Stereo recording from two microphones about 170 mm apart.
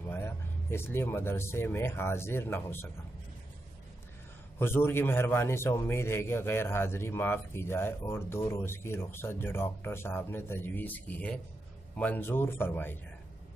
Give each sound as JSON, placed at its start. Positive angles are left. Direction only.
{"t": 0.1, "sound": "speech", "side_deg": 15}
{"t": 4.6, "sound": "a man's voice", "side_deg": 15}